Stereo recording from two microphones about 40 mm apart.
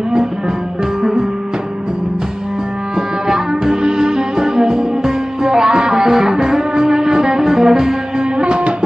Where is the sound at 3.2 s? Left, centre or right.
Centre.